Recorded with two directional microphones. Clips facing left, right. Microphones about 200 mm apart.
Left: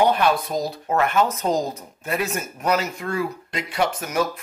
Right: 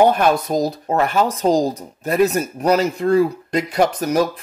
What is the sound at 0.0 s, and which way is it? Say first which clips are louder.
Speech: right 4 dB; 45° right (ahead or behind).